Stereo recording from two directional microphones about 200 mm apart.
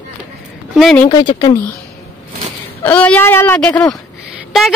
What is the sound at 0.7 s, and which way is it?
Speech, centre (ahead or behind).